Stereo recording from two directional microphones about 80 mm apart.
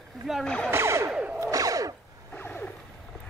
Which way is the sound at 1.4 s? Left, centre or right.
Right.